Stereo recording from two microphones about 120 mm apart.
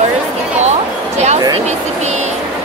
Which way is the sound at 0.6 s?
70° right (ahead or behind).